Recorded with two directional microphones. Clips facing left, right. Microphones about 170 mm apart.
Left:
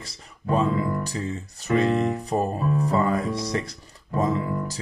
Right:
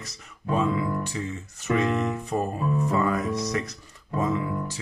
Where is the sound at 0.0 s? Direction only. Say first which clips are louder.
Left 2 dB; 30° left (ahead or behind).